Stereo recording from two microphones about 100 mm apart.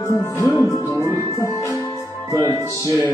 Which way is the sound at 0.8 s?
35° right (ahead or behind).